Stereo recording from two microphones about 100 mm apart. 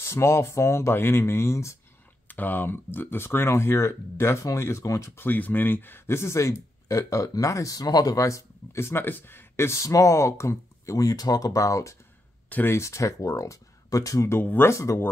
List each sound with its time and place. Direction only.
0.0 s speech: 30° left (ahead or behind)
2.2 s speech: 20° left (ahead or behind)
12.4 s speech: 20° left (ahead or behind)
14.4 s speech: 20° left (ahead or behind)